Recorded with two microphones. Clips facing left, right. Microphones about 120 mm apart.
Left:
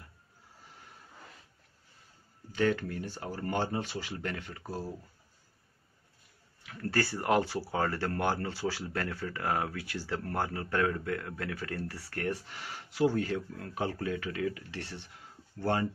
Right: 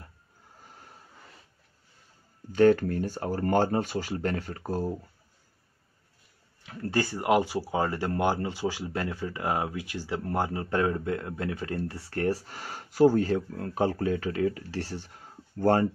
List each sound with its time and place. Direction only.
2.5 s speech: 45° right (ahead or behind)
6.6 s speech: 25° right (ahead or behind); by 15.9 s 45° right (ahead or behind)